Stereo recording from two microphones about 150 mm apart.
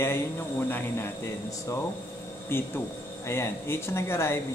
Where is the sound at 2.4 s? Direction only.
15° left (ahead or behind).